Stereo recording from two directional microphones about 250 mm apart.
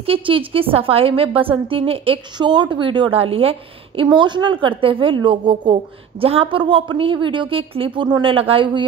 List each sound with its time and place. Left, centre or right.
0.0 s a woman's voice: right